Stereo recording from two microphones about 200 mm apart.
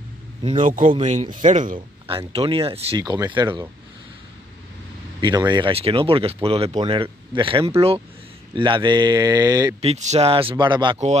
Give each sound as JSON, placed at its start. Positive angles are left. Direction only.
{"t": 0.4, "sound": "speech", "side_deg": -35}
{"t": 1.8, "sound": "speech", "side_deg": -25}
{"t": 5.5, "sound": "speech", "side_deg": -25}
{"t": 9.8, "sound": "speech", "side_deg": -35}